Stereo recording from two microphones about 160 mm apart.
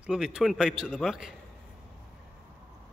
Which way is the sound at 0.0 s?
5° right (ahead or behind).